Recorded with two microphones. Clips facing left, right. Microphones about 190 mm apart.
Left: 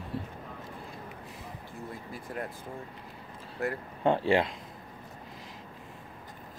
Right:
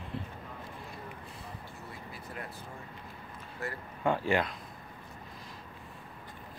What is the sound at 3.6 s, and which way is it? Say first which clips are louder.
Speech: left 7 dB; 55° left (ahead or behind).